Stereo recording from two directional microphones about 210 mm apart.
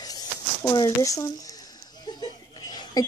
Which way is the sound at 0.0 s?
20° left (ahead or behind).